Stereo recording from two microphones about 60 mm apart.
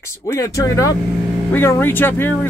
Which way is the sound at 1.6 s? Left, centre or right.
Left.